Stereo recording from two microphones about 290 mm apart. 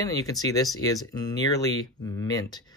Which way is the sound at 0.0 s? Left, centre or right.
Centre.